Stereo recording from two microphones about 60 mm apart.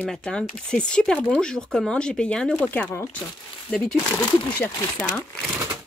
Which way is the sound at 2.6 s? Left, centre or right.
Left.